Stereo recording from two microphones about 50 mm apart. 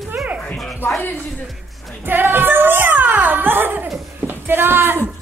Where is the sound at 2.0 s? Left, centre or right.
Right.